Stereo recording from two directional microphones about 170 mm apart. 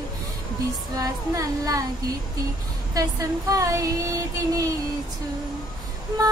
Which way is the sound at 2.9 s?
20° right (ahead or behind).